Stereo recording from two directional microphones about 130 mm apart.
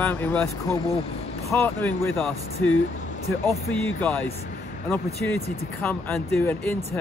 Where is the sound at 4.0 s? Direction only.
15° left (ahead or behind).